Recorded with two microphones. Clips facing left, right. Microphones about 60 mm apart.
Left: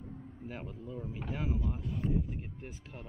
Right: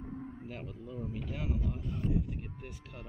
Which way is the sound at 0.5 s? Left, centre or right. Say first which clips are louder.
Left 1 dB; centre.